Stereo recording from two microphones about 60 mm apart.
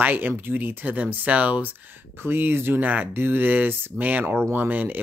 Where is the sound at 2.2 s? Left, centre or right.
Right.